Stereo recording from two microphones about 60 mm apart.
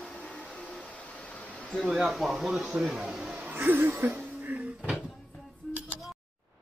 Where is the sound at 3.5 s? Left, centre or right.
Right.